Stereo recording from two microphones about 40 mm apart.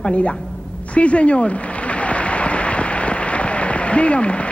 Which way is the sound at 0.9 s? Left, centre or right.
Left.